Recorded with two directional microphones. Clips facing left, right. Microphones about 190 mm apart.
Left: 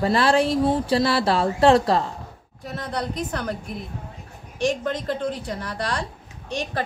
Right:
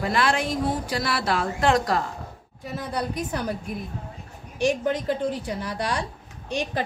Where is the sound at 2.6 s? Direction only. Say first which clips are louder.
Even; 5° right (ahead or behind).